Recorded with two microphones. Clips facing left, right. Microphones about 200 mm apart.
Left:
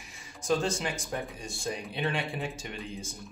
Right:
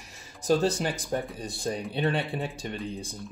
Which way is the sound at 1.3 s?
35° right (ahead or behind).